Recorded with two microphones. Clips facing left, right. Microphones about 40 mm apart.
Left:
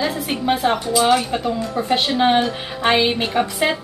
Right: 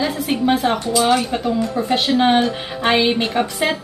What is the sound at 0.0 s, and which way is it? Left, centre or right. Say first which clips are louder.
A woman's voice: right 2 dB; centre.